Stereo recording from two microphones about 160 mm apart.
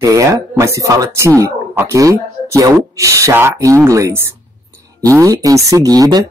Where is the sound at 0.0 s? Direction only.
20° right (ahead or behind).